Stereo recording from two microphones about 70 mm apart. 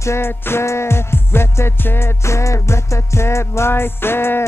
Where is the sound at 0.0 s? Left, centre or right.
Left.